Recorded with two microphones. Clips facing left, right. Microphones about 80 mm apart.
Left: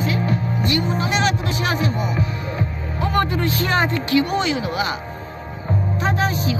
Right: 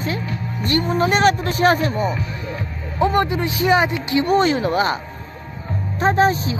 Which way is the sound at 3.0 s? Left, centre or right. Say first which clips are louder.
Right 2 dB; centre.